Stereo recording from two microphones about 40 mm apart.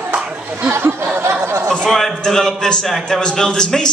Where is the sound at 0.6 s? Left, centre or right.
Right.